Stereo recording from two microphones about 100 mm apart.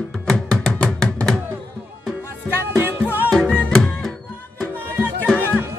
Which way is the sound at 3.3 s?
10° left (ahead or behind).